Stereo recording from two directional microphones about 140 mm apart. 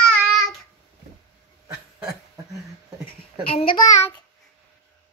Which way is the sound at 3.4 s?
45° left (ahead or behind).